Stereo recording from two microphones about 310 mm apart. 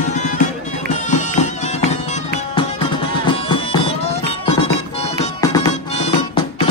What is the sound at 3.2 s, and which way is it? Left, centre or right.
Music, centre.